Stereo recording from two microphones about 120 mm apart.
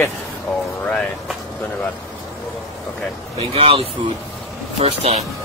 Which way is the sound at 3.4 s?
55° right (ahead or behind).